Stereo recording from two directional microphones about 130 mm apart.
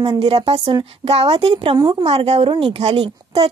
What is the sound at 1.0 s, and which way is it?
A woman's voice, 50° right (ahead or behind).